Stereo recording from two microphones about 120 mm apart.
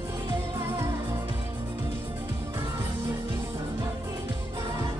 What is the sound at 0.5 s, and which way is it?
Music of asia, 20° right (ahead or behind).